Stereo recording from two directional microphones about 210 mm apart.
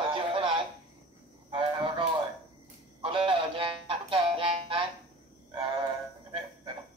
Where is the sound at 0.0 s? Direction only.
25° right (ahead or behind).